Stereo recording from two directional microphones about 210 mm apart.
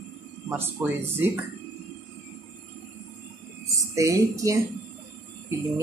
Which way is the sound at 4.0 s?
15° right (ahead or behind).